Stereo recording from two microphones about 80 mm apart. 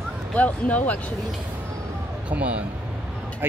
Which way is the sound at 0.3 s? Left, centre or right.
Centre.